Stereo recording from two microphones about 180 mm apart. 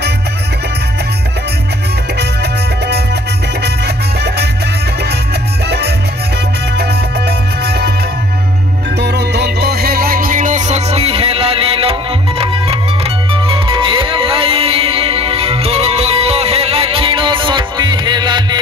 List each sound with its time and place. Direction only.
2.1 s music: 65° right (ahead or behind)
5.7 s music: 65° right (ahead or behind)
8.9 s music: 65° right (ahead or behind); by 18.6 s 25° right (ahead or behind)